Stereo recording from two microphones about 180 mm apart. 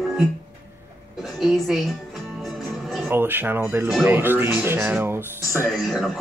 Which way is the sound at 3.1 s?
10° right (ahead or behind).